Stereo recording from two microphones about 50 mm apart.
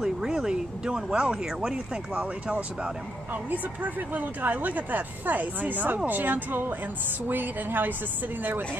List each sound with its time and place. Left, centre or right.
0.0 s speech: centre; by 7.9 s right